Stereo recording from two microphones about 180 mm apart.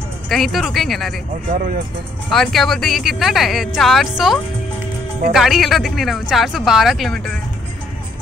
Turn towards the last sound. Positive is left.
turn(degrees=0)  # may be behind; listen again after turning